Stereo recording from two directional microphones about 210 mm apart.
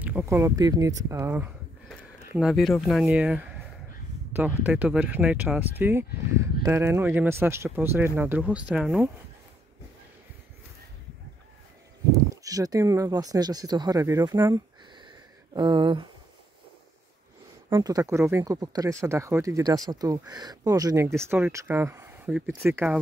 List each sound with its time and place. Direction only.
0.0 s speech: 10° right (ahead or behind)
12.1 s speech: 15° right (ahead or behind)
17.6 s speech: 15° right (ahead or behind)